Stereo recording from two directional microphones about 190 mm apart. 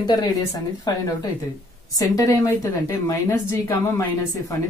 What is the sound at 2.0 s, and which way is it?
A woman's voice, 20° left (ahead or behind).